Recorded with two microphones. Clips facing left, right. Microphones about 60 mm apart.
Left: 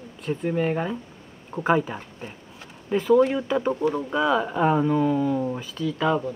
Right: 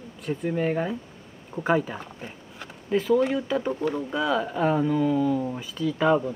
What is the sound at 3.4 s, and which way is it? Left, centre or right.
Speech, left.